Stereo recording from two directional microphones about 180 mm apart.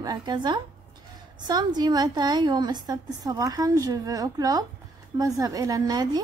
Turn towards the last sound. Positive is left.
turn(degrees=-20)  # may be behind; listen again after turning